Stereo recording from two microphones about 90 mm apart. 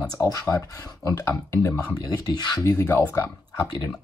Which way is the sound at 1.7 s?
45° left (ahead or behind).